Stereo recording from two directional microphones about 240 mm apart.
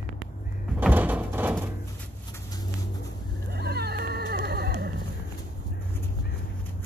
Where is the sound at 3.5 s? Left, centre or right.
Right.